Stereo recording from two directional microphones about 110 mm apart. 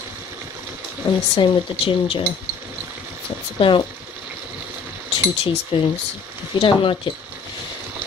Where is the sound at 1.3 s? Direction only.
50° left (ahead or behind).